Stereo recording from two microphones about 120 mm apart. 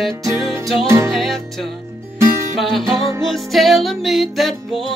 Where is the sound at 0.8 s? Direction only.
25° right (ahead or behind).